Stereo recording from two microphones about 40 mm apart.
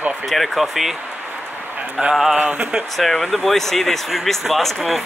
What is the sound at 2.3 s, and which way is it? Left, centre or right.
Speech, right.